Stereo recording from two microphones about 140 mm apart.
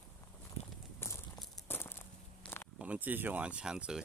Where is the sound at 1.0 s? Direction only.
15° left (ahead or behind).